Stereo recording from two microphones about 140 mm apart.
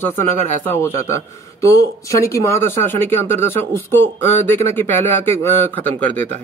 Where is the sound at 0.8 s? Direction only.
20° left (ahead or behind).